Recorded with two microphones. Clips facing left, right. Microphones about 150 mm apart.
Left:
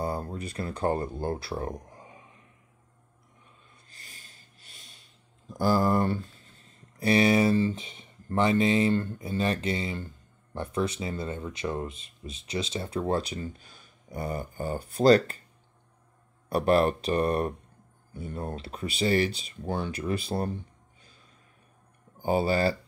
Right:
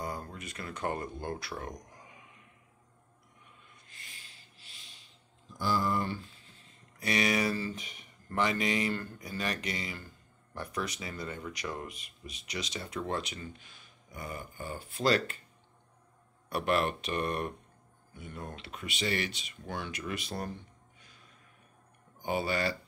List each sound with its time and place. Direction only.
0.0 s speech: 30° left (ahead or behind)
3.9 s a sound: 40° left (ahead or behind)
5.5 s speech: 45° left (ahead or behind)
16.4 s speech: 35° left (ahead or behind)
22.2 s speech: 35° left (ahead or behind)